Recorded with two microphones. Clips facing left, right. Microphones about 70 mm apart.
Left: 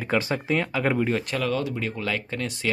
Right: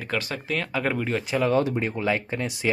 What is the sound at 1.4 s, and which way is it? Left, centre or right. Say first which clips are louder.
Speech: right 4 dB; right.